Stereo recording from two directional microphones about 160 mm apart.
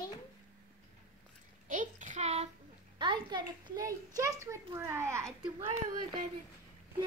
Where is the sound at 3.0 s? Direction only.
30° right (ahead or behind).